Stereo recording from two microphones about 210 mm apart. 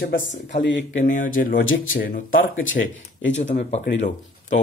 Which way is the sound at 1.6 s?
70° left (ahead or behind).